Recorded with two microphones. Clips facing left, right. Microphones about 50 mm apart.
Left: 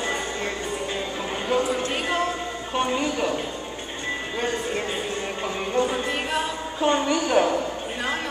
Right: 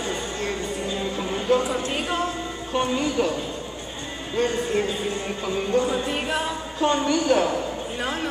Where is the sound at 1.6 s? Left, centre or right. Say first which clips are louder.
Left 1 dB; centre.